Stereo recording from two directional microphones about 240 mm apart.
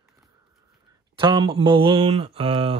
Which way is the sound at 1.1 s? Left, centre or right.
Right.